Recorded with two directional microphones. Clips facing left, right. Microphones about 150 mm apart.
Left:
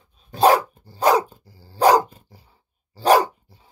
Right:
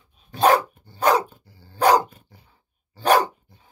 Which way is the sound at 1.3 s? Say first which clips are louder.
Left 2 dB; 35° left (ahead or behind).